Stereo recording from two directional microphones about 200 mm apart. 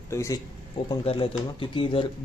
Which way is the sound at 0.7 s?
25° left (ahead or behind).